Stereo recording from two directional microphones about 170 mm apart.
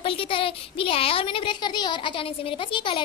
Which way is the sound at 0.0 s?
30° left (ahead or behind).